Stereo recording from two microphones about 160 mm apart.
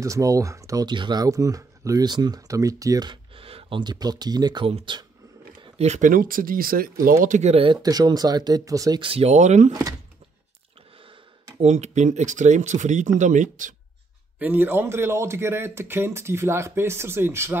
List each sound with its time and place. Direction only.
0.0 s speech: 20° right (ahead or behind); by 6.9 s 65° right (ahead or behind)
7.2 s speech: 45° right (ahead or behind); by 9.0 s 20° right (ahead or behind)
9.0 s speech: 40° right (ahead or behind)
11.6 s speech: 45° right (ahead or behind)
14.4 s speech: 10° right (ahead or behind)